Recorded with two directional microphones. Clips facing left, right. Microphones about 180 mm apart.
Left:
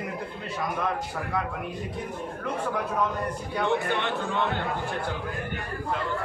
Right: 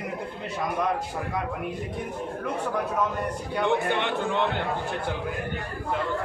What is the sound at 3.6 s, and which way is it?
Speech, 15° right (ahead or behind).